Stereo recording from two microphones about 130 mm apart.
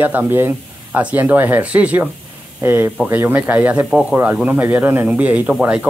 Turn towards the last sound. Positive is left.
turn(degrees=-10)  # may be behind; listen again after turning